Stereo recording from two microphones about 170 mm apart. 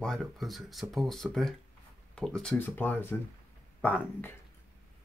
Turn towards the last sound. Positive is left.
turn(degrees=10)  # may be behind; listen again after turning